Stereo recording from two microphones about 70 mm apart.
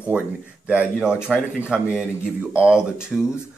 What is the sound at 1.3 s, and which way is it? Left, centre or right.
Speech, centre.